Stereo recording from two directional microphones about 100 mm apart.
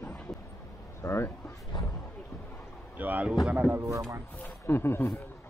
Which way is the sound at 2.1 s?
20° left (ahead or behind).